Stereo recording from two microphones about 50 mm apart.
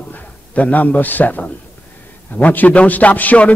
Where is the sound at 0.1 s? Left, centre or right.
Left.